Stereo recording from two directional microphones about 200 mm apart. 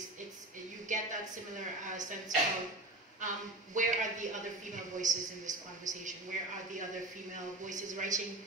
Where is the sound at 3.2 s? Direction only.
40° right (ahead or behind).